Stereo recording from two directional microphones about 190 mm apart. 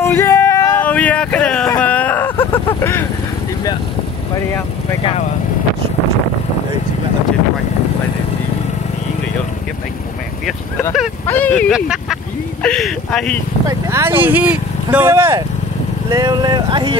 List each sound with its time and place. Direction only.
0.0 s a sound: 15° left (ahead or behind)
1.8 s whimper: 10° left (ahead or behind)
2.5 s vehicle: 20° left (ahead or behind)
5.0 s speech: 35° left (ahead or behind)
11.2 s speech: 10° left (ahead or behind)
11.7 s speech: 5° right (ahead or behind)
13.7 s speech: 15° right (ahead or behind)